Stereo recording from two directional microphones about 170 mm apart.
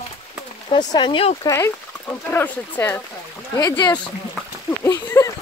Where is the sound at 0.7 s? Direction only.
25° left (ahead or behind).